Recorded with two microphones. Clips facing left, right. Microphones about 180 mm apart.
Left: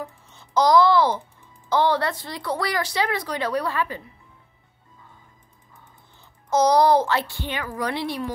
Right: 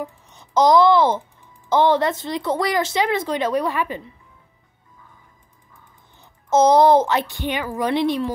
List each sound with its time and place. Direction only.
0.0 s a child's voice: 20° right (ahead or behind)
6.5 s a woman's voice: 20° right (ahead or behind)